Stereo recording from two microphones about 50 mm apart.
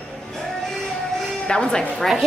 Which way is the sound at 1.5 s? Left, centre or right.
Centre.